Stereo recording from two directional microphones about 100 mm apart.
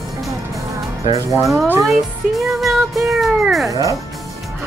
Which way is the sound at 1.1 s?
30° right (ahead or behind).